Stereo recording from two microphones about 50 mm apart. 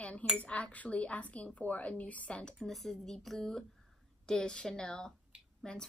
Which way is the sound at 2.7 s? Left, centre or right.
Centre.